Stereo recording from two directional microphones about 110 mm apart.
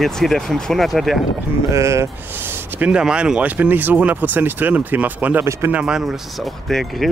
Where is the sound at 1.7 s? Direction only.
25° right (ahead or behind).